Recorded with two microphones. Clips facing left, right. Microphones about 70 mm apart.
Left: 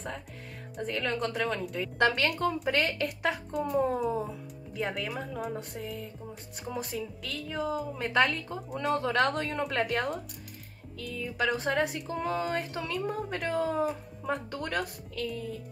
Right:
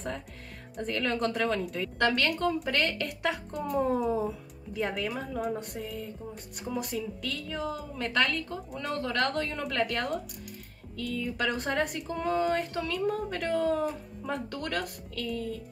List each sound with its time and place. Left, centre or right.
0.7 s a woman's voice: centre
2.0 s a woman's voice: centre
8.0 s a woman's voice: centre
8.9 s speech: centre
9.9 s a woman's voice: centre